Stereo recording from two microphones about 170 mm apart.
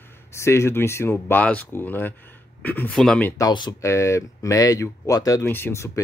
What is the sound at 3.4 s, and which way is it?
Speech, 25° left (ahead or behind).